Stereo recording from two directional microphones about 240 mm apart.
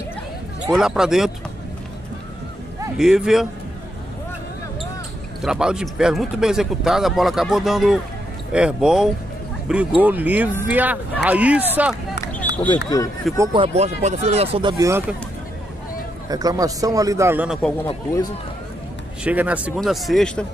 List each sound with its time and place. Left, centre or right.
0.7 s speech: centre
3.0 s speech: centre
5.4 s a man's voice: centre
12.6 s speech: centre
13.4 s speech: right
16.3 s a man's voice: centre
17.8 s speech: centre
19.2 s speech: centre